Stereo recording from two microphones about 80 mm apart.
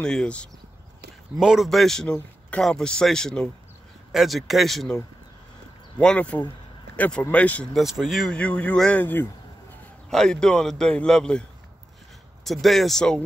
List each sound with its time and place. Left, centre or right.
0.0 s a man's voice: centre
1.4 s a man's voice: centre
5.9 s a man's voice: centre
7.7 s a man's voice: centre
8.4 s a man's voice: centre
10.0 s a man's voice: centre
12.4 s a man's voice: centre